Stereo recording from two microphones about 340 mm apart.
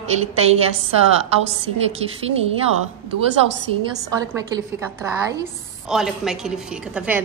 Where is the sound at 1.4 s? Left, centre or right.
Centre.